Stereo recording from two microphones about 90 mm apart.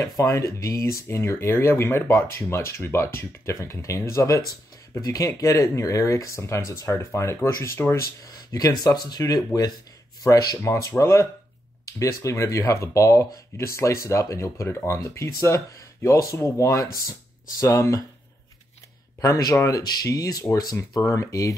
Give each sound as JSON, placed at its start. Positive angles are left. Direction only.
{"t": 0.2, "sound": "speech", "side_deg": 35}
{"t": 8.3, "sound": "a sound", "side_deg": 45}
{"t": 8.8, "sound": "speech", "side_deg": 50}
{"t": 10.6, "sound": "speech", "side_deg": 30}
{"t": 19.2, "sound": "speech", "side_deg": 40}